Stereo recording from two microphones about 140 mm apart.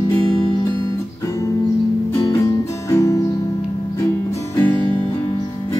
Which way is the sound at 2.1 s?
20° left (ahead or behind).